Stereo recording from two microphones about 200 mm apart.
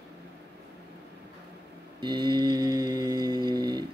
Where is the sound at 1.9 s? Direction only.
25° right (ahead or behind).